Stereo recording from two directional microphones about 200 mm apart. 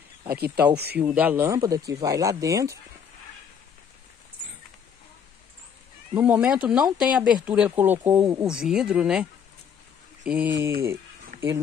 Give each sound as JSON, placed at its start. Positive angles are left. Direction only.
{"t": 0.9, "sound": "speech", "side_deg": -10}
{"t": 6.1, "sound": "speech", "side_deg": -10}